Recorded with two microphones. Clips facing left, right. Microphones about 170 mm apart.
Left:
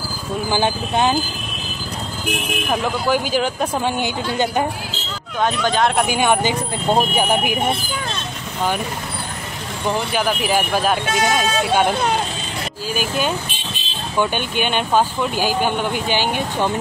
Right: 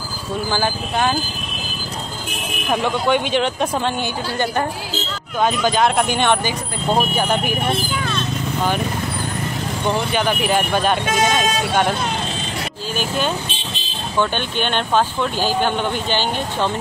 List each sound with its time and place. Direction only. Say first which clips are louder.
0.5 s speech: left 3 dB; 20° left (ahead or behind)
2.7 s speech: right 2 dB; 5° left (ahead or behind)
4.0 s speech: left 2 dB; 15° left (ahead or behind)
5.4 s speech: right 1 dB; 5° right (ahead or behind); by 7.7 s 15° left (ahead or behind)
9.8 s speech: even; 5° left (ahead or behind)
14.1 s speech: even; 10° left (ahead or behind)